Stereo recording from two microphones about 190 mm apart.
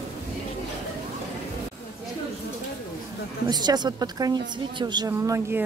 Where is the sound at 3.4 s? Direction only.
20° right (ahead or behind).